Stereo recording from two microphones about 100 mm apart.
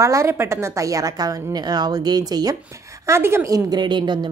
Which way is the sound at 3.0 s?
25° right (ahead or behind).